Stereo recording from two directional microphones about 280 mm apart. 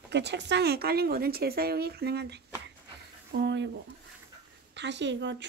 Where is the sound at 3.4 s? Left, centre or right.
Right.